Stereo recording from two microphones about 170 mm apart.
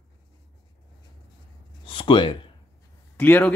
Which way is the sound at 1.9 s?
30° left (ahead or behind).